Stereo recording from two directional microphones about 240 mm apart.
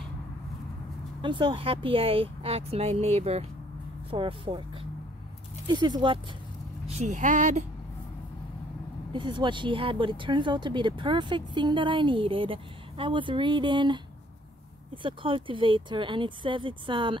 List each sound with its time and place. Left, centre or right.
1.2 s speech: centre
5.7 s speech: centre
6.9 s speech: right
9.1 s speech: centre